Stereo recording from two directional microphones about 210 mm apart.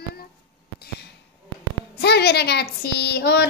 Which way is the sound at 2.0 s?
50° left (ahead or behind).